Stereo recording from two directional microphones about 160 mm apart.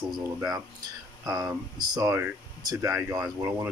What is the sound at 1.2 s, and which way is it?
Speech, 25° right (ahead or behind).